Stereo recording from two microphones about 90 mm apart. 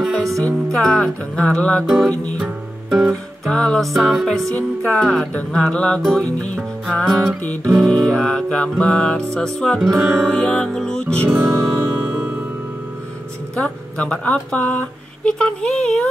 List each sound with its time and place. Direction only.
0.0 s music: 5° left (ahead or behind)
0.3 s music: 40° right (ahead or behind)
0.7 s speech: 10° left (ahead or behind)
1.9 s music: centre (ahead or behind)
3.1 s music: 10° left (ahead or behind)
4.6 s speech: 15° left (ahead or behind)
9.8 s music: 5° right (ahead or behind)
10.0 s music: 25° right (ahead or behind)
10.3 s speech: 5° left (ahead or behind)
13.6 s speech: 15° left (ahead or behind)